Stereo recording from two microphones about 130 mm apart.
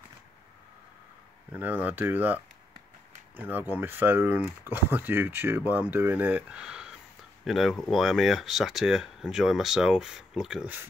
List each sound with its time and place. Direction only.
1.5 s speech: 15° right (ahead or behind)